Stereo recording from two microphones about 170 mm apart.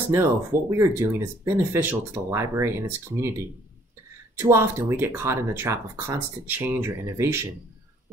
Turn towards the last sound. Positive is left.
turn(degrees=-15)  # may be behind; listen again after turning